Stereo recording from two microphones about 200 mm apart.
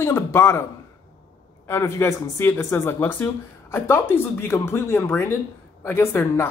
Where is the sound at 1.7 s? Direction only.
10° left (ahead or behind).